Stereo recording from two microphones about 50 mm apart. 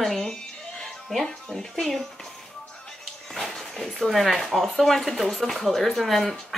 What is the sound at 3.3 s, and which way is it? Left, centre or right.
Speech, centre.